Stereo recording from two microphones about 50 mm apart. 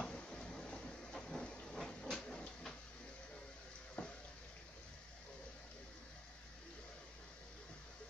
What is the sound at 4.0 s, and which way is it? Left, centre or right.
Water, left.